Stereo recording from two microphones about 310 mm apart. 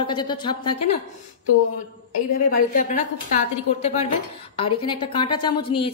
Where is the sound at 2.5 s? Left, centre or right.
Left.